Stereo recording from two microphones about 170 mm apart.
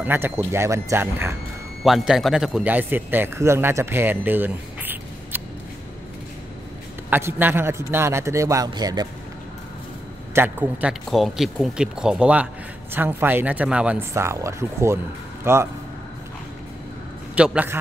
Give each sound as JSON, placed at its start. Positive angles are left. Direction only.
{"t": 0.0, "sound": "speech", "side_deg": -10}
{"t": 1.8, "sound": "a man's voice", "side_deg": 0}
{"t": 7.1, "sound": "a man's voice", "side_deg": -15}
{"t": 10.3, "sound": "speech", "side_deg": -10}
{"t": 17.4, "sound": "speech", "side_deg": -10}